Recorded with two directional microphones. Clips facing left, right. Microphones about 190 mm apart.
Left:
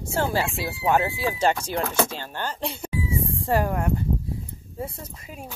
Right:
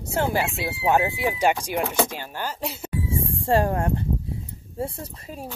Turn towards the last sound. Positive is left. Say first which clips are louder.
# right 3 dB
turn(degrees=-35)  # may be behind; listen again after turning